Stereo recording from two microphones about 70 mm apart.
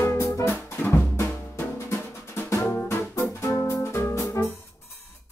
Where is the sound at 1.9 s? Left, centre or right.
Left.